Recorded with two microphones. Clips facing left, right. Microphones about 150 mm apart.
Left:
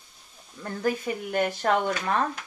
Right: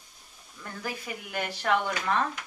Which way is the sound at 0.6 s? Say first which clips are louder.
Left 9 dB; 40° left (ahead or behind).